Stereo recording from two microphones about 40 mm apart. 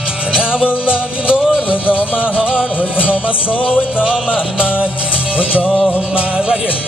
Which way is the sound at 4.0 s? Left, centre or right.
Right.